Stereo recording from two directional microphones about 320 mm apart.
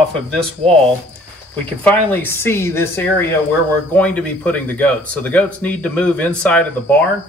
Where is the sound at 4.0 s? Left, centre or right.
Centre.